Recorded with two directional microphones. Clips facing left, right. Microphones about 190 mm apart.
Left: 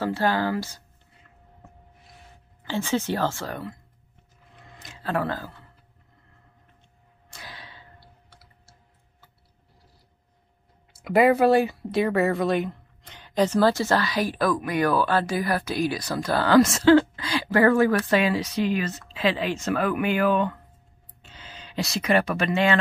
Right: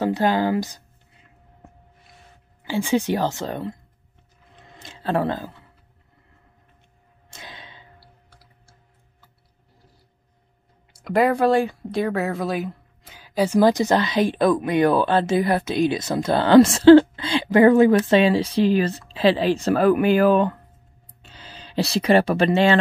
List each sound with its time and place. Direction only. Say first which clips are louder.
0.0 s speech: right 4 dB; 15° right (ahead or behind)
2.6 s speech: right 4 dB; 10° right (ahead or behind)
4.7 s speech: right 4 dB; 30° right (ahead or behind)
7.2 s arrow: right 1 dB; 20° right (ahead or behind)
8.0 s a sound: even; centre (ahead or behind)
11.0 s speech: left 1 dB; 5° left (ahead or behind); by 22.8 s 30° right (ahead or behind)